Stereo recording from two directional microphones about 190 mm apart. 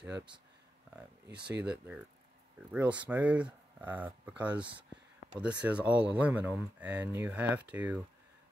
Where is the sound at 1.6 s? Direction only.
5° right (ahead or behind).